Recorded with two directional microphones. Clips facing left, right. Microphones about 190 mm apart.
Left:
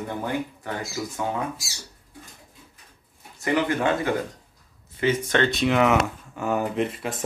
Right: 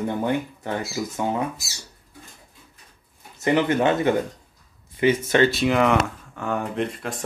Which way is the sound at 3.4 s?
20° right (ahead or behind).